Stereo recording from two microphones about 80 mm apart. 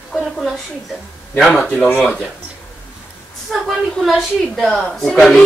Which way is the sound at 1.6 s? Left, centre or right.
Centre.